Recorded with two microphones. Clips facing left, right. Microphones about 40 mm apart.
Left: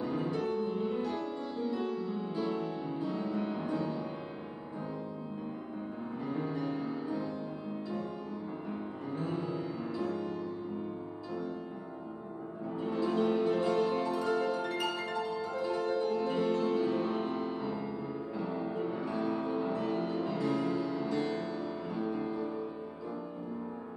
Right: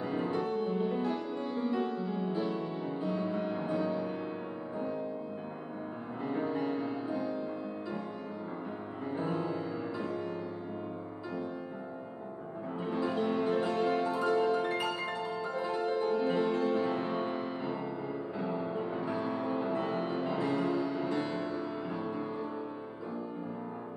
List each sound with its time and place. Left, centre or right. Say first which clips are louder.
0.0 s music: right 1 dB; right
6.3 s music: right 3 dB; right
9.2 s music: right 1 dB; right
12.8 s music: left 2 dB; right